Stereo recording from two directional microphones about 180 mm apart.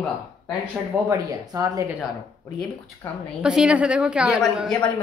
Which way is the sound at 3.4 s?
5° right (ahead or behind).